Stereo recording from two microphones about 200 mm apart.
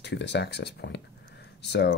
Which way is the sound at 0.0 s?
60° left (ahead or behind).